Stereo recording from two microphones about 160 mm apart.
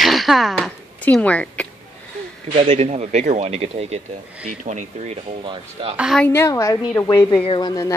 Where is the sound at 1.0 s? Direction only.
10° left (ahead or behind).